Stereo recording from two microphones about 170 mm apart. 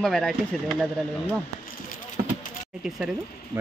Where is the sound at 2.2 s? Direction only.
50° right (ahead or behind).